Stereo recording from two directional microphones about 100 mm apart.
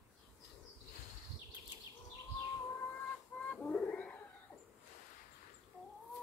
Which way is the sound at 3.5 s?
15° left (ahead or behind).